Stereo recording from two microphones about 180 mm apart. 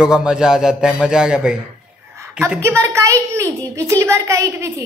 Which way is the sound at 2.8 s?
15° right (ahead or behind).